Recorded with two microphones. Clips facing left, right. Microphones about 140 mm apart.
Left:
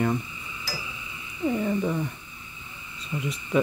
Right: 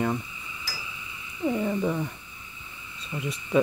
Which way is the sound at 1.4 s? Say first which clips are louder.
Even; 5° right (ahead or behind).